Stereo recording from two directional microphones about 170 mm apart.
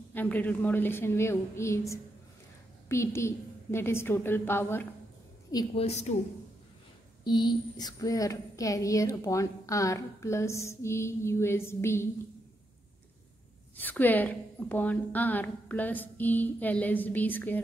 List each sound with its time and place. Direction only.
0.1 s a woman's voice: 10° left (ahead or behind)
5.8 s a woman's voice: 40° left (ahead or behind)
7.2 s speech: 25° left (ahead or behind)
13.7 s a woman's voice: 10° left (ahead or behind)